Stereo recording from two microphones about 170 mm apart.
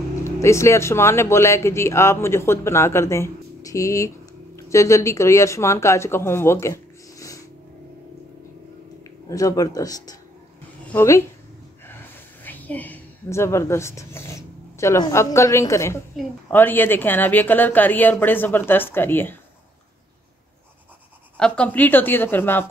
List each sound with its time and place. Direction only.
0.2 s speech: 15° left (ahead or behind)
9.0 s a woman's voice: 20° left (ahead or behind)
12.4 s speech: 10° left (ahead or behind)
21.4 s speech: 5° left (ahead or behind)